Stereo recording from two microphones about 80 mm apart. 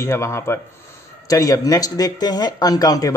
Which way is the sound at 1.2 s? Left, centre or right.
Left.